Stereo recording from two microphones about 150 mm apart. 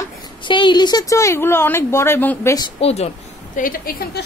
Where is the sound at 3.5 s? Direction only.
70° left (ahead or behind).